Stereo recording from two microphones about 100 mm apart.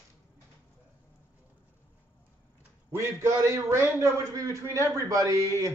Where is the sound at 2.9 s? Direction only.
30° right (ahead or behind).